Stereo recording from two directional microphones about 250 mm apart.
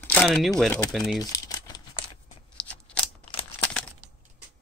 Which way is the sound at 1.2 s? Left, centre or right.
Centre.